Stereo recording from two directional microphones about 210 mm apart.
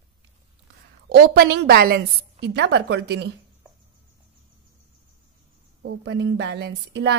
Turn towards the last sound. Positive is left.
turn(degrees=-55)  # may be behind; listen again after turning